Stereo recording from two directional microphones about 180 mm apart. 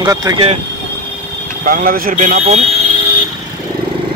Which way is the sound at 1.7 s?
55° right (ahead or behind).